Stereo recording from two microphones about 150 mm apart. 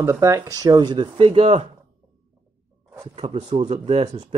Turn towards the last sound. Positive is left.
turn(degrees=-50)  # may be behind; listen again after turning